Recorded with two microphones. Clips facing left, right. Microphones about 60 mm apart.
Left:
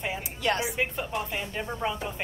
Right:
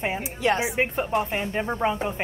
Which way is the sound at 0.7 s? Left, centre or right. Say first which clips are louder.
Right 6 dB; right.